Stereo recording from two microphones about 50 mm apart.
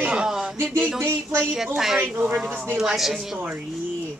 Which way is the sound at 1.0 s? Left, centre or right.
Right.